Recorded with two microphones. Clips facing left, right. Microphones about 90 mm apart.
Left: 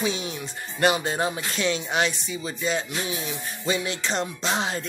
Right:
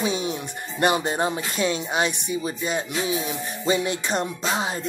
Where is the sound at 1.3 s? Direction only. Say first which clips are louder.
Right 2 dB; 10° right (ahead or behind).